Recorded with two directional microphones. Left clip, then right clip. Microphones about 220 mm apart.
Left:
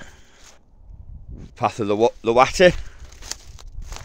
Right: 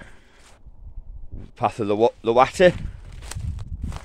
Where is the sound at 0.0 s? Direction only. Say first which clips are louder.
Left 2 dB; 5° left (ahead or behind).